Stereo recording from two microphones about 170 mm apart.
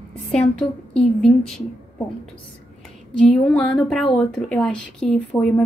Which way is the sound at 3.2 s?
5° left (ahead or behind).